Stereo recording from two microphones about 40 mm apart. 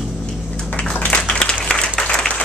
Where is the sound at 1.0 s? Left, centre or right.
Left.